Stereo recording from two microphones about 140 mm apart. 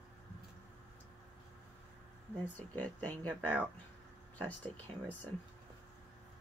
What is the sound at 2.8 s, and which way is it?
Speech, 10° left (ahead or behind).